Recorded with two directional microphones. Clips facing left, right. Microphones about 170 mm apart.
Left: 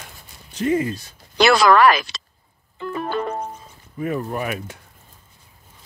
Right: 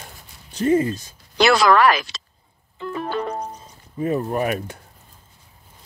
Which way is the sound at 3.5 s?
30° right (ahead or behind).